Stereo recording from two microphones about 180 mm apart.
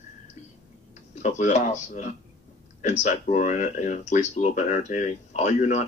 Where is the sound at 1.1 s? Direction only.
40° left (ahead or behind).